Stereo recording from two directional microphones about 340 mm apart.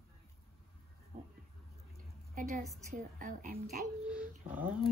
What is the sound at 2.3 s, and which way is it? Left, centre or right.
A woman's voice, right.